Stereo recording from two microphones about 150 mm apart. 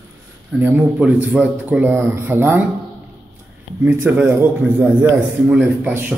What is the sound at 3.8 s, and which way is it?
Speech, 15° right (ahead or behind).